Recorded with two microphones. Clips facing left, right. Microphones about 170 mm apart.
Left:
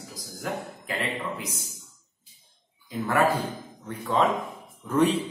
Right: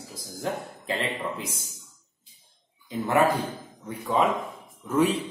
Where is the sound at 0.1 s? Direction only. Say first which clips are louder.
Right 2 dB; 25° right (ahead or behind).